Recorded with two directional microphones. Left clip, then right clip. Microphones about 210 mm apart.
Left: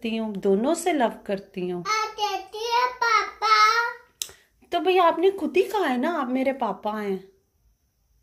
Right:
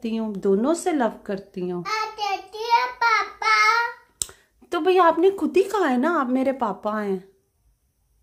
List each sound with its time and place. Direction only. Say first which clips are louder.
0.0 s speech: right 1 dB; 20° right (ahead or behind)
1.9 s child singing: left 1 dB; 5° right (ahead or behind)
4.2 s speech: right 1 dB; 25° right (ahead or behind)